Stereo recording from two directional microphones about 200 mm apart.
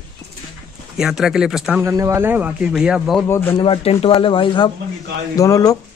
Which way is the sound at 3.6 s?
25° left (ahead or behind).